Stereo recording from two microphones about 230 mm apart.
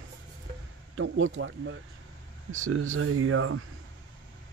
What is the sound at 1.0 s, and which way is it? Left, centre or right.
Speech, right.